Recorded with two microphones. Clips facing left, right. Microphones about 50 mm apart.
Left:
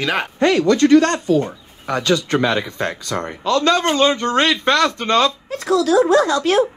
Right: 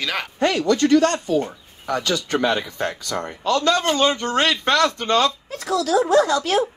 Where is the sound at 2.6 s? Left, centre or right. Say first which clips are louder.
Left 2 dB; left.